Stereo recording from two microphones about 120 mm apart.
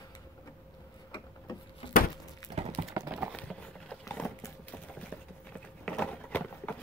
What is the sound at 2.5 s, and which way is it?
Horse, 60° right (ahead or behind).